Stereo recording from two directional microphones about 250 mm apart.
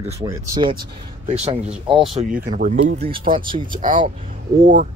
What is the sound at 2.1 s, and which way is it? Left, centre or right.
Speech, right.